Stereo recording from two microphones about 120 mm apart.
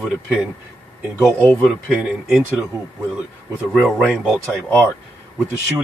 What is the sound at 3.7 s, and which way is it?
Speech, centre (ahead or behind).